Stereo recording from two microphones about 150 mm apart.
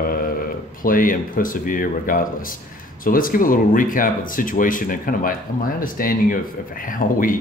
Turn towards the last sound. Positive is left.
turn(degrees=65)  # may be behind; listen again after turning